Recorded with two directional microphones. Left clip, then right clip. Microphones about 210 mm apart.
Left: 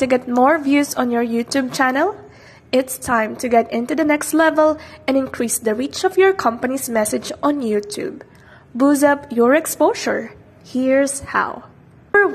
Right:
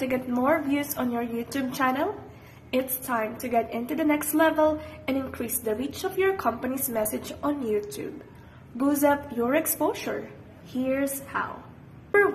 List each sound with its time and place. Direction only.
0.1 s a woman's voice: 40° left (ahead or behind)